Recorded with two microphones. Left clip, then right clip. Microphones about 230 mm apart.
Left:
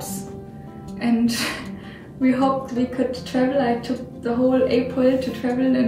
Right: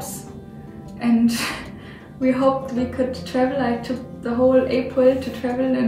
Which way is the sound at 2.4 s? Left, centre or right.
Centre.